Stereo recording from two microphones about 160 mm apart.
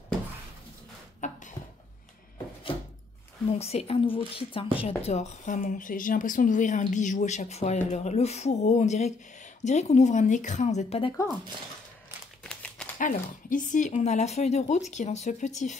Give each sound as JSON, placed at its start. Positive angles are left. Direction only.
{"t": 1.2, "sound": "a sound", "side_deg": 50}
{"t": 3.5, "sound": "speech", "side_deg": 40}
{"t": 12.4, "sound": "typewriter", "side_deg": 5}
{"t": 13.0, "sound": "speech", "side_deg": 55}